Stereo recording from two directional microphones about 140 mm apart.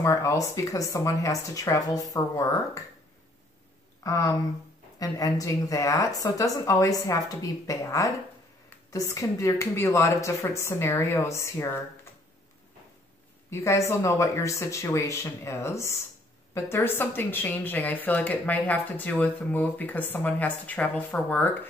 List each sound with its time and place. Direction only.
0.0 s speech: 20° left (ahead or behind)
4.0 s speech: 25° left (ahead or behind)
13.5 s speech: 20° left (ahead or behind)